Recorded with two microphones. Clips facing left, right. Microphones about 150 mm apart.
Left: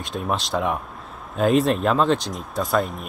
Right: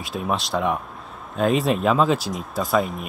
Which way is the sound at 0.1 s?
Centre (ahead or behind).